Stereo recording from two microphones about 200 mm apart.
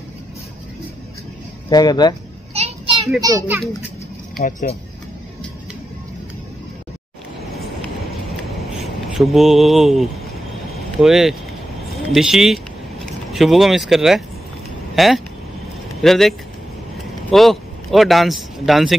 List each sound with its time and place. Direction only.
1.7 s speech: 20° left (ahead or behind)
2.5 s children playing: 30° right (ahead or behind)
3.2 s a child's voice: 15° right (ahead or behind)
4.4 s speech: 40° left (ahead or behind)
8.8 s a man's voice: centre (ahead or behind)